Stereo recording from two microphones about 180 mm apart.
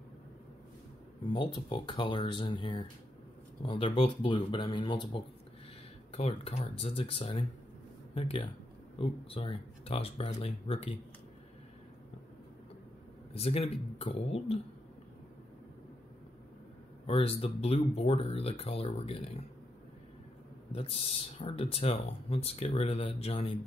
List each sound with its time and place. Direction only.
1.2 s speech: 25° left (ahead or behind)
13.4 s speech: 35° left (ahead or behind)
17.0 s speech: 35° left (ahead or behind)
20.7 s speech: 30° left (ahead or behind)